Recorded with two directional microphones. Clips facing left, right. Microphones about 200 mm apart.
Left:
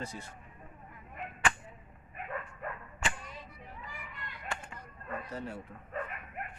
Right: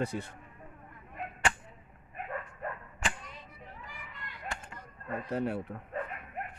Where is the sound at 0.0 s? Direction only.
60° right (ahead or behind).